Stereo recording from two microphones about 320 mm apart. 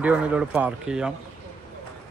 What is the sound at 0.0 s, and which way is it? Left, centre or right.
Speech, centre.